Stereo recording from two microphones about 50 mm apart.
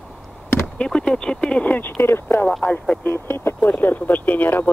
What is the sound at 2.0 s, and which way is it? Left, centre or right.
Speech, left.